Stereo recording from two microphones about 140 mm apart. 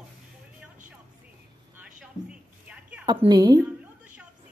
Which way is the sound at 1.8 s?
10° right (ahead or behind).